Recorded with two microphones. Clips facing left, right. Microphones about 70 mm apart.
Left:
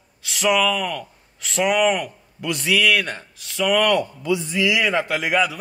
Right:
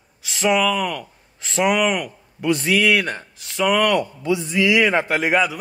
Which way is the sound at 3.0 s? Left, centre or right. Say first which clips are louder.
Right 2 dB; centre.